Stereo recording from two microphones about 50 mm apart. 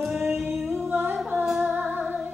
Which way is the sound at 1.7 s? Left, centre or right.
Right.